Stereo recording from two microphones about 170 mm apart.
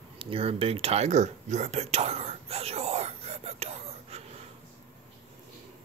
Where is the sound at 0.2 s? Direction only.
35° right (ahead or behind).